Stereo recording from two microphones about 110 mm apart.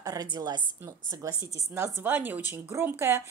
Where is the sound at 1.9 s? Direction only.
15° right (ahead or behind).